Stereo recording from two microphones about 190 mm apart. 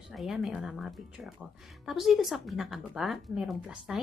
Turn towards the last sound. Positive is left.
turn(degrees=0)  # may be behind; listen again after turning